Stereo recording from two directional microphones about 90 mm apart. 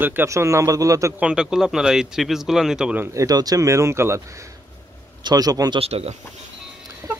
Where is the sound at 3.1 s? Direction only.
45° right (ahead or behind).